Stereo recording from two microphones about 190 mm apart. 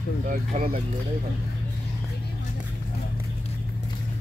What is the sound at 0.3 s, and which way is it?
Speech, 45° right (ahead or behind).